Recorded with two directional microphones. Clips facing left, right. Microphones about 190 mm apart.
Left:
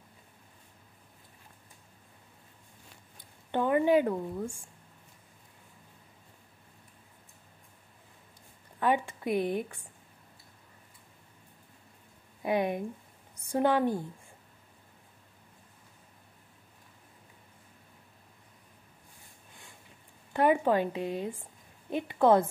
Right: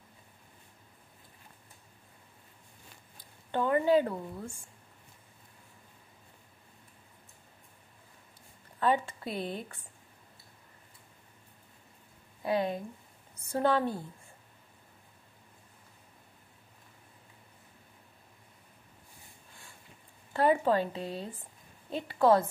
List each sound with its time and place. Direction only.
3.5 s speech: 15° left (ahead or behind)
8.7 s speech: 15° left (ahead or behind)
12.4 s a woman's voice: 15° left (ahead or behind)
20.3 s a woman's voice: 15° left (ahead or behind)